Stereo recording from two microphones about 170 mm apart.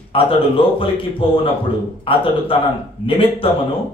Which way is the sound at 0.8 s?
30° left (ahead or behind).